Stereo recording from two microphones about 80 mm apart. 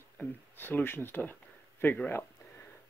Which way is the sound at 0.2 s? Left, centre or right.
Left.